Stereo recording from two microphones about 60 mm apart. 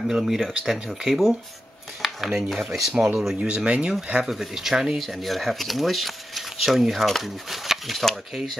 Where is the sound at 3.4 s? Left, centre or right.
Centre.